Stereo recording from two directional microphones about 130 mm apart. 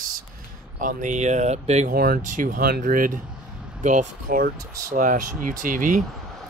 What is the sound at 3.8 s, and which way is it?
Speech, 70° right (ahead or behind).